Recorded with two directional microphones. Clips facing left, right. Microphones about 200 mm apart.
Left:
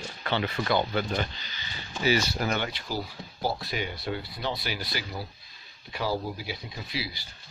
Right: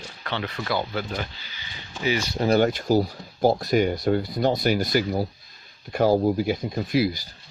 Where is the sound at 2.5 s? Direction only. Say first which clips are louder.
Right 11 dB; 45° right (ahead or behind).